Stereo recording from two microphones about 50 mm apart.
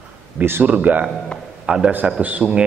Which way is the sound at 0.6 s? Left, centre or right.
Right.